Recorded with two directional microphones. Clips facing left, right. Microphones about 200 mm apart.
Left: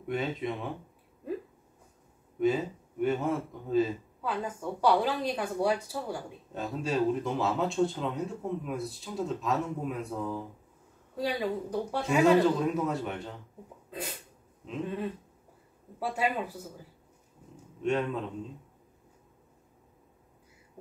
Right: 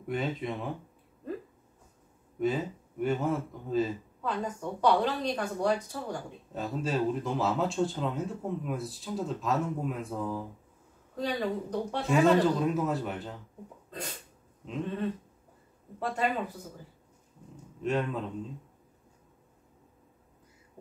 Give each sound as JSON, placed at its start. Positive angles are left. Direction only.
{"t": 0.0, "sound": "a man's voice", "side_deg": 0}
{"t": 2.3, "sound": "a man's voice", "side_deg": 0}
{"t": 16.0, "sound": "speech", "side_deg": 10}
{"t": 17.8, "sound": "a man's voice", "side_deg": 0}